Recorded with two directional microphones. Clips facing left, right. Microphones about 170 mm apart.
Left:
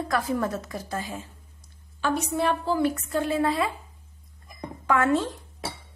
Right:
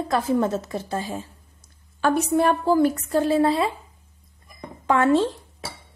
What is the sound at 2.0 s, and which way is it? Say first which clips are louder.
A woman's voice: right 6 dB; 50° right (ahead or behind).